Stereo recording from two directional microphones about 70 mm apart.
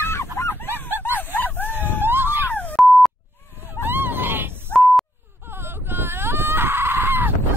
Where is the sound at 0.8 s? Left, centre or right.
Right.